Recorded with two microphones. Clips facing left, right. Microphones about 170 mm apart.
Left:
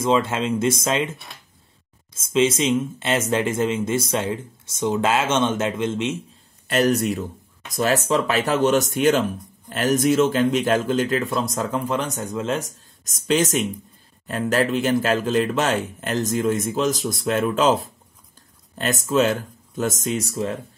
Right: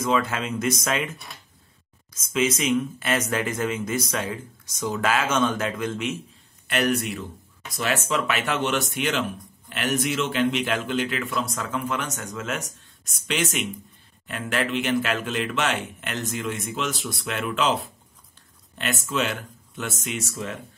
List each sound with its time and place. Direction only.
0.0 s speech: 25° left (ahead or behind)
2.1 s speech: 25° left (ahead or behind)
6.7 s speech: 35° left (ahead or behind)